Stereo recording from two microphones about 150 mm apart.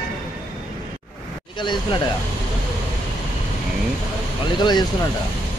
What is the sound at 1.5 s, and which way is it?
Speech, 30° left (ahead or behind).